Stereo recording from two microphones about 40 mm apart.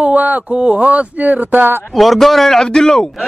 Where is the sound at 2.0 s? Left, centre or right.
Centre.